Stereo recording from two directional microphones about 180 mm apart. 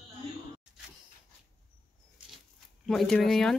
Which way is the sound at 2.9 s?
5° left (ahead or behind).